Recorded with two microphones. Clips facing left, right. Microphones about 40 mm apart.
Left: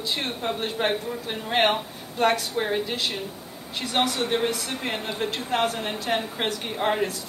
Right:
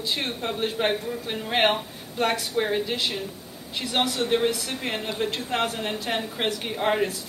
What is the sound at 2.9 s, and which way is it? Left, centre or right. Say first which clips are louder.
Speech: right 1 dB; centre.